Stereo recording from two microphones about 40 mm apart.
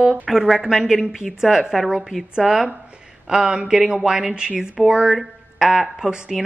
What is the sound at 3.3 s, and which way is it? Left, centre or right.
A woman's voice, right.